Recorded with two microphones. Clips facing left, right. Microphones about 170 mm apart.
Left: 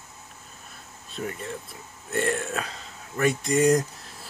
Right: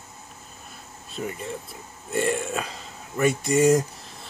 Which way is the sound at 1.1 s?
Centre (ahead or behind).